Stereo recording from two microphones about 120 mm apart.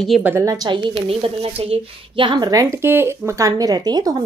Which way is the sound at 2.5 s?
25° right (ahead or behind).